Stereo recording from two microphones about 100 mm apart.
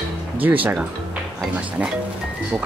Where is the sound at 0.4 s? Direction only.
15° right (ahead or behind).